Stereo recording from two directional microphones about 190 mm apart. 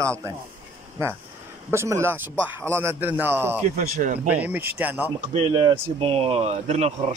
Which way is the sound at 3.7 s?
45° right (ahead or behind).